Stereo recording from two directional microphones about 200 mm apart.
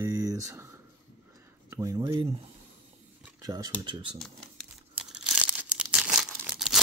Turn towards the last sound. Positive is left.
turn(degrees=0)  # may be behind; listen again after turning